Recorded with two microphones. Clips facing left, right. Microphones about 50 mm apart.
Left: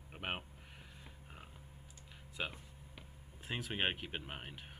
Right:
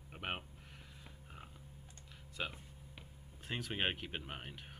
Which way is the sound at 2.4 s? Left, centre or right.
Centre.